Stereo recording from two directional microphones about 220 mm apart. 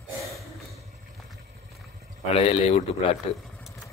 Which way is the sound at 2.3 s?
30° left (ahead or behind).